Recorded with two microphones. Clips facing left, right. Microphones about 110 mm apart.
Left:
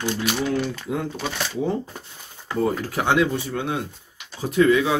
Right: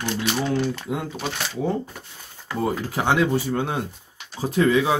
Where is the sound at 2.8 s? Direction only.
30° right (ahead or behind).